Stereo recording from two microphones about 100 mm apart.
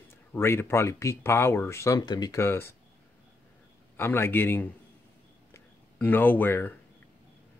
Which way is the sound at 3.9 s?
25° left (ahead or behind).